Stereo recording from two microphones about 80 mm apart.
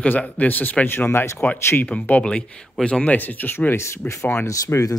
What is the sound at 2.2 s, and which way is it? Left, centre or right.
Speech, centre.